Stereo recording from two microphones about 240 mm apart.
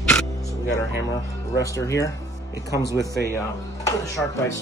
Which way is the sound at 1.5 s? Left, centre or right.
Centre.